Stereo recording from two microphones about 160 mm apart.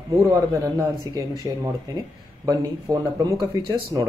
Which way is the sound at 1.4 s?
20° right (ahead or behind).